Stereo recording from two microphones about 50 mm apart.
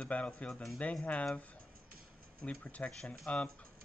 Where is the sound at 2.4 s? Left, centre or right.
Left.